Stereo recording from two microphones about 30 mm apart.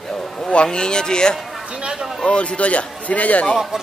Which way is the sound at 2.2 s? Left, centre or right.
Left.